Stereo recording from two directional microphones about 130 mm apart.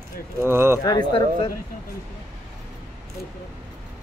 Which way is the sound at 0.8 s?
35° left (ahead or behind).